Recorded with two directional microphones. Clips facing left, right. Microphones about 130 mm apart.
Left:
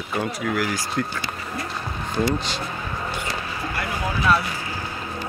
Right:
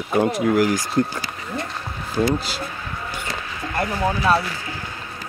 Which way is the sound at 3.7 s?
35° right (ahead or behind).